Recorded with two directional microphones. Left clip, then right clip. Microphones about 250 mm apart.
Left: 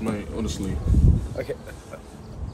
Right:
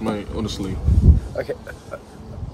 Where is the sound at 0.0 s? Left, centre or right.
Centre.